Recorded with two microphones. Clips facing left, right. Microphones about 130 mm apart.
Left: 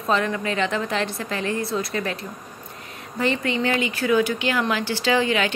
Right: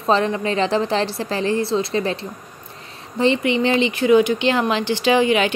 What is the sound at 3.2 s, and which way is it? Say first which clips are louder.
Speech: right 5 dB; 20° right (ahead or behind).